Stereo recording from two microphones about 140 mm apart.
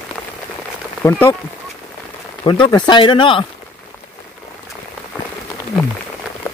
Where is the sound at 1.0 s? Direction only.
15° left (ahead or behind).